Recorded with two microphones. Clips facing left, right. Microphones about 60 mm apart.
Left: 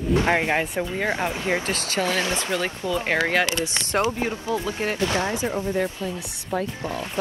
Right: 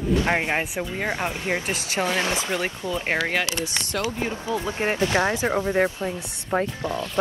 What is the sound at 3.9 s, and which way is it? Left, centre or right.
Speech, left.